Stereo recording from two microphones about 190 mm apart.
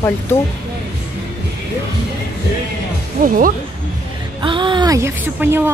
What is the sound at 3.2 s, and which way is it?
Speech, 45° right (ahead or behind).